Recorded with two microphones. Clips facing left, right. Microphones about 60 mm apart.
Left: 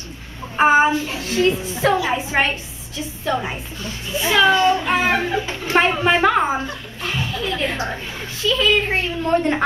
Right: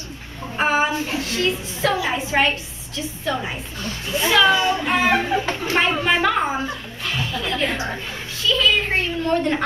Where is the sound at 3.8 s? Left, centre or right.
Right.